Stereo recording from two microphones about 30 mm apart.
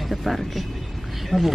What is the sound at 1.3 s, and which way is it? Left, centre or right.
Speech, left.